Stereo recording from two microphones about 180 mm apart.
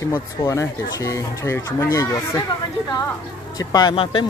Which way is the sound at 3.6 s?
20° left (ahead or behind).